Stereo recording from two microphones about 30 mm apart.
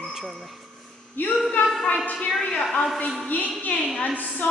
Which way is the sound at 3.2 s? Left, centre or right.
Left.